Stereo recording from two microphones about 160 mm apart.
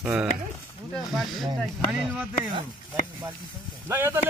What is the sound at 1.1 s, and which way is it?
Speech, centre (ahead or behind).